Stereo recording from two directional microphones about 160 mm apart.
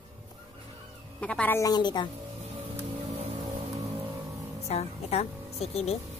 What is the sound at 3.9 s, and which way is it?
Vehicle, 15° right (ahead or behind).